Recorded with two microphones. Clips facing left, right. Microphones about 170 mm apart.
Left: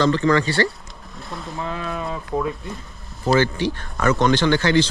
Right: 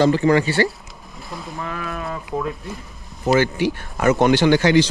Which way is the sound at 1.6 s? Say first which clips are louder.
Left 2 dB; 20° left (ahead or behind).